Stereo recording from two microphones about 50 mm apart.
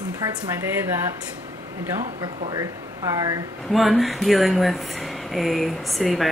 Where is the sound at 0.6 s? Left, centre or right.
Right.